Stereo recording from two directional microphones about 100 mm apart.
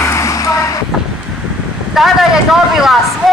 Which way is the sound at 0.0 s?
30° left (ahead or behind).